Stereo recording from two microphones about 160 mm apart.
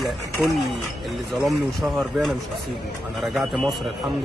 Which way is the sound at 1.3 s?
Centre (ahead or behind).